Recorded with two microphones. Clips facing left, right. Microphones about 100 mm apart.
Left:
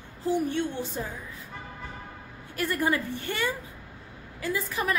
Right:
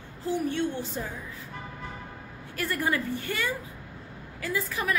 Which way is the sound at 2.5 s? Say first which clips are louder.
Left 2 dB; 20° left (ahead or behind).